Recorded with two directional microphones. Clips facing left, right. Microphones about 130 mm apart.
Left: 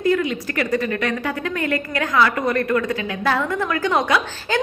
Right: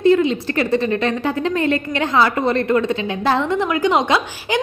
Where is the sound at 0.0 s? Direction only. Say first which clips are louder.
Right 5 dB; 25° right (ahead or behind).